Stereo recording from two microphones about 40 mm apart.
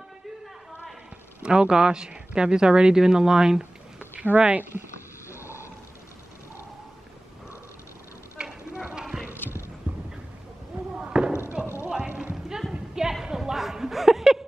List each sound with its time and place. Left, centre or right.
1.4 s speech: right
4.4 s speech: right
8.4 s clip-clop: centre
9.9 s a sound: right
11.0 s fireworks: right
11.8 s clip-clop: centre
12.7 s a sound: centre